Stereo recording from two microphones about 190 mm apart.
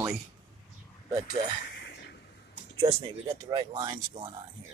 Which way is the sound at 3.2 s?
20° right (ahead or behind).